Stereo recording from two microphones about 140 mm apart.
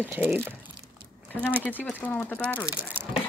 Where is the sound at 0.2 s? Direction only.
5° left (ahead or behind).